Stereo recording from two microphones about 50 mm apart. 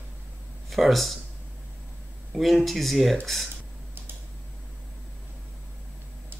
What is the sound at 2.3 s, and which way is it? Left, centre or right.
Speech, centre.